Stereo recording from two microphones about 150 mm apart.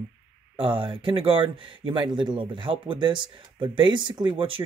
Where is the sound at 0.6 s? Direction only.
35° right (ahead or behind).